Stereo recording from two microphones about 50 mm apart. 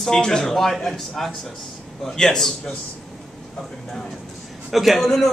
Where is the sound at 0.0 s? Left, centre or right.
Centre.